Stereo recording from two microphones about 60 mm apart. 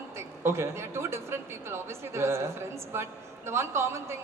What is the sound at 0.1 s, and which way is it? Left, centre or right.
A woman's voice, right.